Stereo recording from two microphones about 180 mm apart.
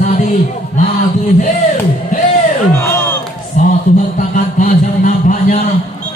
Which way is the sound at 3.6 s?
45° left (ahead or behind).